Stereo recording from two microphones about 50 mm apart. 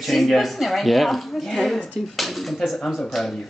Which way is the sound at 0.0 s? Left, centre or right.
Centre.